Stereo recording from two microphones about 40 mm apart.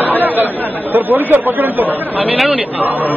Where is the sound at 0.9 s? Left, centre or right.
Right.